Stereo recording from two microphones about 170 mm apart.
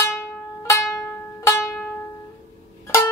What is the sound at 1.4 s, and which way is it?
Music, 15° left (ahead or behind).